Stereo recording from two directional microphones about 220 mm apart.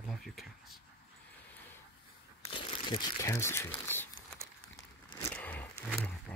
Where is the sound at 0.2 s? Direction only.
Centre (ahead or behind).